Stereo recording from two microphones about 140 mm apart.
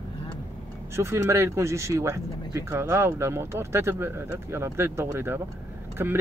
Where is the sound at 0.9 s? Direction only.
20° right (ahead or behind).